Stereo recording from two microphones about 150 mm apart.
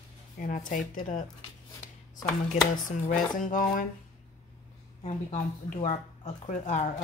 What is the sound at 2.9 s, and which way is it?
Speech, 60° left (ahead or behind).